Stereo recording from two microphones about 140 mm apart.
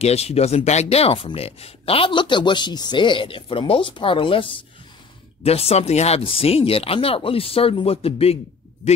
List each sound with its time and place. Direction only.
0.0 s speech: 50° left (ahead or behind)